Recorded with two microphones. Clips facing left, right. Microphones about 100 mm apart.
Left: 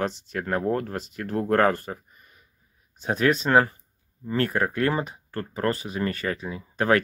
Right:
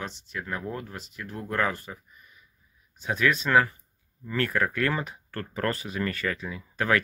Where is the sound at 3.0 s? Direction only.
35° left (ahead or behind).